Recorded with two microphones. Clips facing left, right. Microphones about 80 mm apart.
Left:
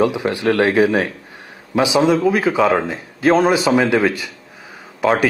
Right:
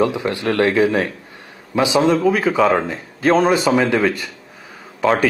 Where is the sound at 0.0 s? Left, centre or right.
Left.